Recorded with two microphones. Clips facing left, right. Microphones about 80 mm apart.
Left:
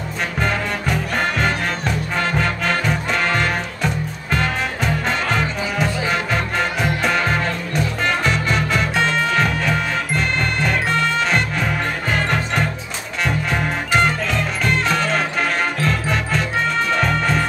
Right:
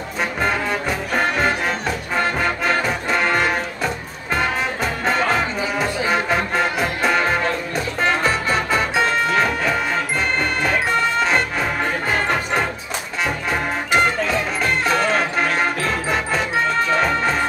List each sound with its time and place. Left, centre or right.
0.4 s music: centre